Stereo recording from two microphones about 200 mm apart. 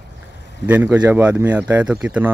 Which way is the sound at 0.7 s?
10° right (ahead or behind).